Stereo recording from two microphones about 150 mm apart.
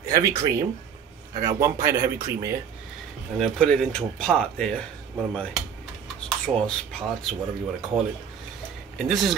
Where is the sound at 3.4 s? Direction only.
5° left (ahead or behind).